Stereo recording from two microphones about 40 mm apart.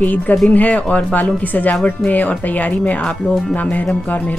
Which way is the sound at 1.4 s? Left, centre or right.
Left.